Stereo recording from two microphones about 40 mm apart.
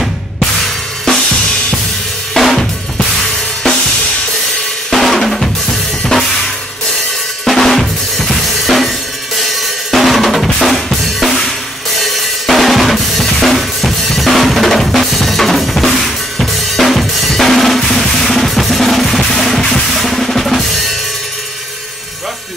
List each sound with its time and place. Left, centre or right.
2.3 s drum kit: centre
4.9 s drum kit: centre